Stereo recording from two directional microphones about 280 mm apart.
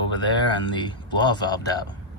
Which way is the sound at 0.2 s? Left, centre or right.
Centre.